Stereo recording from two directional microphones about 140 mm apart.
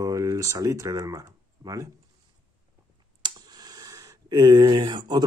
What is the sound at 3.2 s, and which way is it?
Speech, 30° right (ahead or behind).